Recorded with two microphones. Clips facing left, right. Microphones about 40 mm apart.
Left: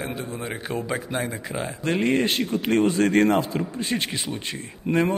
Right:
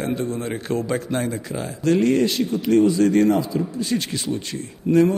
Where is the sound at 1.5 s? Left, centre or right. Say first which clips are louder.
Right 6 dB; left.